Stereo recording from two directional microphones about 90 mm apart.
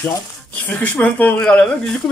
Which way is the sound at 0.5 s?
20° left (ahead or behind).